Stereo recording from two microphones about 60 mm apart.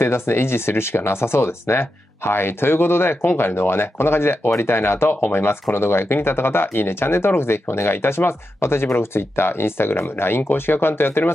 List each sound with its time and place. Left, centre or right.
0.0 s speech: left